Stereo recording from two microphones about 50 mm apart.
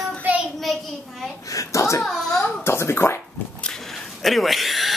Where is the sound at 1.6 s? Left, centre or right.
Left.